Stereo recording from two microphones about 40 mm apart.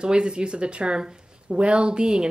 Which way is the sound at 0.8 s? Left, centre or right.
Centre.